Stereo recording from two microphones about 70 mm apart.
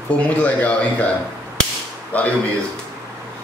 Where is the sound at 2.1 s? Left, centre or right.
Left.